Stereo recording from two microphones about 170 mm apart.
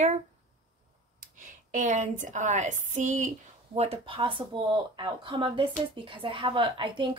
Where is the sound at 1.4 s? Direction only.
50° right (ahead or behind).